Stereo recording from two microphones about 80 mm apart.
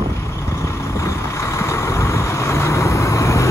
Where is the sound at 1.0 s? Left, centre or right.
Left.